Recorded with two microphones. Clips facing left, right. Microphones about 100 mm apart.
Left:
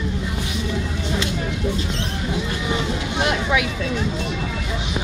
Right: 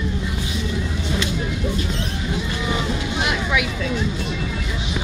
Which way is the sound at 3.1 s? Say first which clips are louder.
Left 3 dB; 40° left (ahead or behind).